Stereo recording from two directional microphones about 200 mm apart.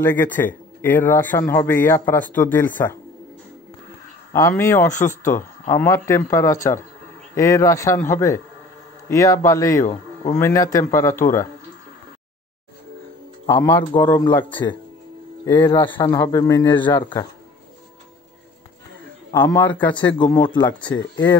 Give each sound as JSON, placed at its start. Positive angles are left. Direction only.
{"t": 0.0, "sound": "speech", "side_deg": 10}
{"t": 4.3, "sound": "speech", "side_deg": 15}
{"t": 13.5, "sound": "speech", "side_deg": 15}
{"t": 15.4, "sound": "a man's voice", "side_deg": 10}
{"t": 19.3, "sound": "speech", "side_deg": 10}
{"t": 19.9, "sound": "speech", "side_deg": 25}
{"t": 20.9, "sound": "speech", "side_deg": 70}